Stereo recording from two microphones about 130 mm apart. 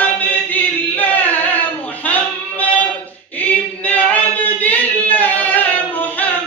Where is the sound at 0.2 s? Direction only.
10° left (ahead or behind).